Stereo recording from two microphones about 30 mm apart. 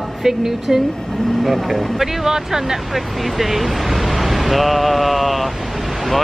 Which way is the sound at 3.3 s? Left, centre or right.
Centre.